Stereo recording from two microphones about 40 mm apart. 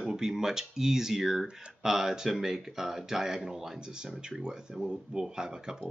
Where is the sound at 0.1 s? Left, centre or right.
Centre.